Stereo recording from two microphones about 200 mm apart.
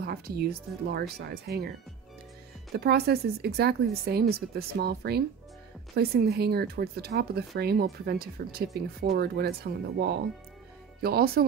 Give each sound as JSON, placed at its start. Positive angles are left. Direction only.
{"t": 0.0, "sound": "speech", "side_deg": -50}
{"t": 2.7, "sound": "speech", "side_deg": -55}